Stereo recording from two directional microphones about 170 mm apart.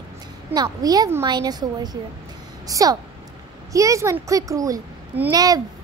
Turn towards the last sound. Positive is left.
turn(degrees=-20)  # may be behind; listen again after turning